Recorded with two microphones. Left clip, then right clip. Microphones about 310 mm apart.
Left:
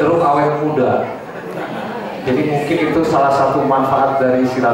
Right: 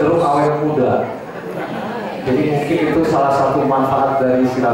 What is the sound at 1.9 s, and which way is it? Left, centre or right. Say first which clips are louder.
A man's voice: even; centre.